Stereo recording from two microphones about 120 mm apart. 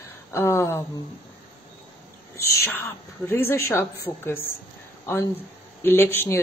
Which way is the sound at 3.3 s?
20° left (ahead or behind).